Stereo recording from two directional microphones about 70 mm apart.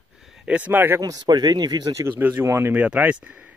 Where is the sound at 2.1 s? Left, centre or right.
Right.